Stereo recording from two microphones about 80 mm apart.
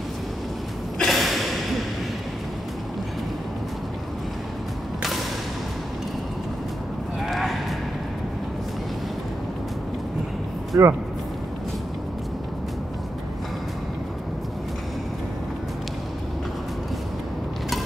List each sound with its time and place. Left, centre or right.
0.9 s gasp: centre
7.2 s a sound: centre
10.7 s speech: right